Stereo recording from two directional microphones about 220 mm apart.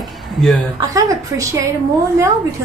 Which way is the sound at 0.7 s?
15° right (ahead or behind).